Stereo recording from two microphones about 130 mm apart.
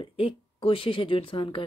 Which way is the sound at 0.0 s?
40° left (ahead or behind).